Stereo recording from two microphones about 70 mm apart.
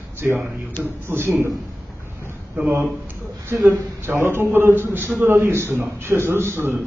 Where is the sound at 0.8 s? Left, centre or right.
Right.